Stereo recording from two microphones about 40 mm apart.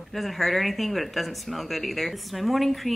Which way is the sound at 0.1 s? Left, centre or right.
Centre.